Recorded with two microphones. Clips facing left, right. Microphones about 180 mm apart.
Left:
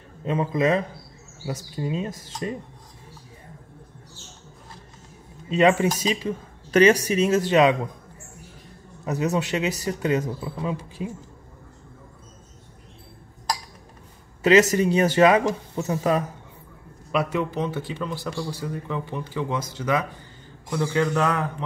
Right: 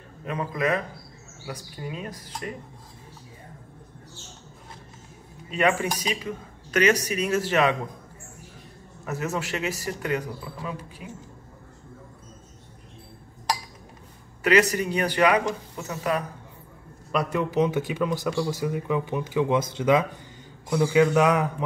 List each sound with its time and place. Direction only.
0.2 s speech: 25° left (ahead or behind)
5.5 s speech: 25° left (ahead or behind)
9.0 s speech: 20° left (ahead or behind)
14.4 s speech: 25° left (ahead or behind)
17.1 s a man's voice: 5° left (ahead or behind)
17.5 s speech: 15° right (ahead or behind)
20.7 s speech: 10° right (ahead or behind)